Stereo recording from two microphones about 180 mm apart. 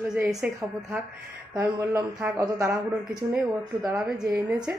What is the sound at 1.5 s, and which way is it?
Speech, 15° right (ahead or behind).